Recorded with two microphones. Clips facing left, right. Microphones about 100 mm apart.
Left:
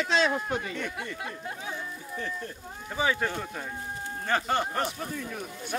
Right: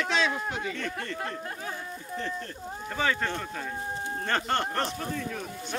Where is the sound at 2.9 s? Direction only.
10° left (ahead or behind).